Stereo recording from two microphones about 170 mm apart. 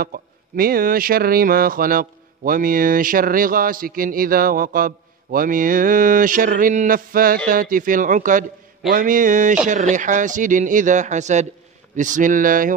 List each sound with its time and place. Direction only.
0.0 s speech: 60° right (ahead or behind)